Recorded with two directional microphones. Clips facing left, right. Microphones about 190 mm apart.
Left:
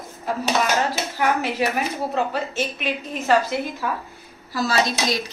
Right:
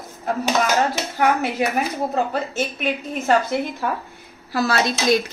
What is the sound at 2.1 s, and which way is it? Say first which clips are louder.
A woman's voice: right 1 dB; 50° right (ahead or behind).